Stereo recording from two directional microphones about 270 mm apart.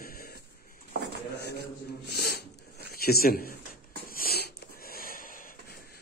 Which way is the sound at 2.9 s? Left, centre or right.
Left.